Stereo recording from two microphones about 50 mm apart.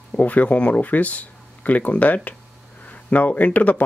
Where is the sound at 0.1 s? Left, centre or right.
Left.